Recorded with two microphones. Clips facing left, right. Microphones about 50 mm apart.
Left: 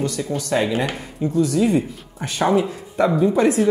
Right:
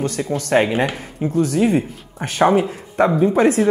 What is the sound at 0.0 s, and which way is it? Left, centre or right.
Speech, right.